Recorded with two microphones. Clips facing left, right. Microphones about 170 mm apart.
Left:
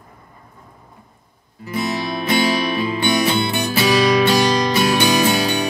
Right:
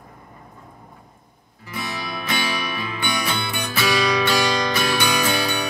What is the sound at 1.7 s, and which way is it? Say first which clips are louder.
Music: left 8 dB; 25° left (ahead or behind).